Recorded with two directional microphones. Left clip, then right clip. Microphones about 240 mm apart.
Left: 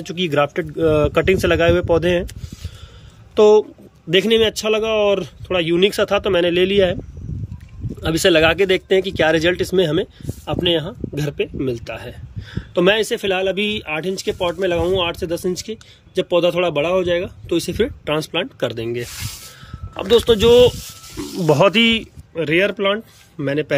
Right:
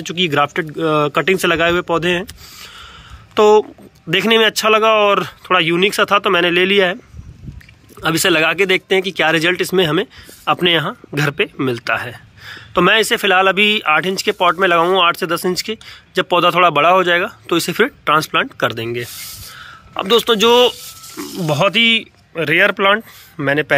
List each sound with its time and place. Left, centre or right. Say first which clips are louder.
0.0 s speech: right 3 dB; centre
8.0 s speech: even; centre